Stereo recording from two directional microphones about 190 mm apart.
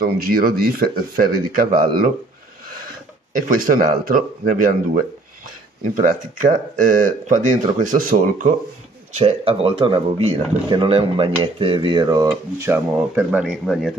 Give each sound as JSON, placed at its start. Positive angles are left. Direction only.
{"t": 0.0, "sound": "speech", "side_deg": -50}
{"t": 3.4, "sound": "speech", "side_deg": -45}
{"t": 6.8, "sound": "speech", "side_deg": -45}
{"t": 9.2, "sound": "speech", "side_deg": -30}